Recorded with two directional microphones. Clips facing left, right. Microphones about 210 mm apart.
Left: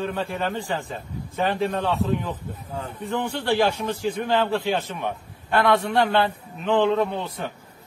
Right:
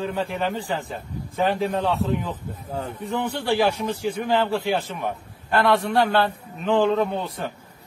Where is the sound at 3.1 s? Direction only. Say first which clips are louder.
Even; 15° right (ahead or behind).